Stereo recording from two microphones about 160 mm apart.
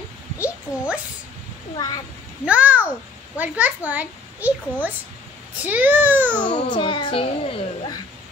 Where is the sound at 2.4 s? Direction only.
10° right (ahead or behind).